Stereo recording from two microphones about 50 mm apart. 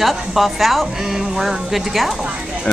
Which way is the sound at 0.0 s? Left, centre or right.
Centre.